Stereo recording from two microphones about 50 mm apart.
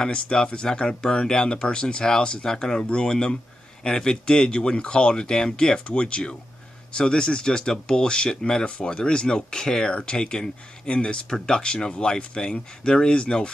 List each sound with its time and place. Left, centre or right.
0.0 s speech: centre